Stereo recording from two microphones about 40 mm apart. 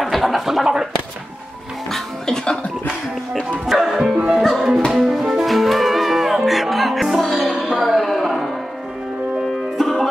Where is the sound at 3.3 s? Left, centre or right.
Centre.